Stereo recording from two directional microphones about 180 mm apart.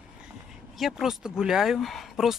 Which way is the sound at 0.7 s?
Centre (ahead or behind).